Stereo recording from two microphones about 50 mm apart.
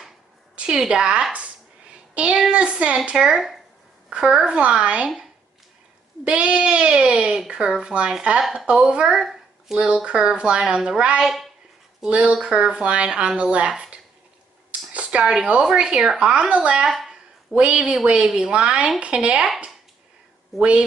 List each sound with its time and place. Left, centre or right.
0.6 s a sound: centre
2.5 s speech: right
4.5 s speech: right
6.2 s speech: right
10.0 s speech: right
11.2 s speech: centre
12.1 s speech: right